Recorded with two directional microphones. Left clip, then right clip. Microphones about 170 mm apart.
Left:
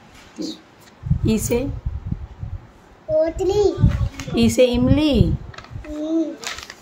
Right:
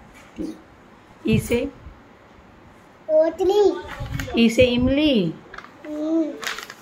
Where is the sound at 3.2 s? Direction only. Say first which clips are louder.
Right 1 dB; centre (ahead or behind).